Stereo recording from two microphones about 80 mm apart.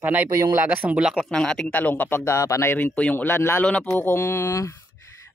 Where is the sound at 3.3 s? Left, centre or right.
Left.